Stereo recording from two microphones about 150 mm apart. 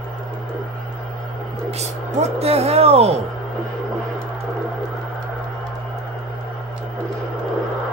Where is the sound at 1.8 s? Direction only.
45° right (ahead or behind).